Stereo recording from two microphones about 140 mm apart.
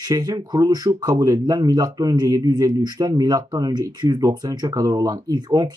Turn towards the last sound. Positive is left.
turn(degrees=-30)  # may be behind; listen again after turning